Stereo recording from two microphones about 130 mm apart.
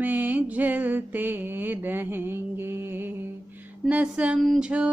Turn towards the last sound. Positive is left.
turn(degrees=-10)  # may be behind; listen again after turning